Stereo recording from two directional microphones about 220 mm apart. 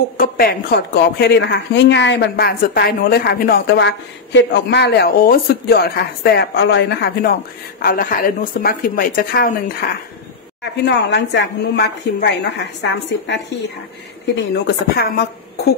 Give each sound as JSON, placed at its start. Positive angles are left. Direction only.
{"t": 0.2, "sound": "a woman's voice", "side_deg": 40}
{"t": 10.6, "sound": "a woman's voice", "side_deg": 50}